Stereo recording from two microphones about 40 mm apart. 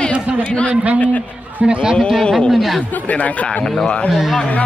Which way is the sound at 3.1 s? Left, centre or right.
Left.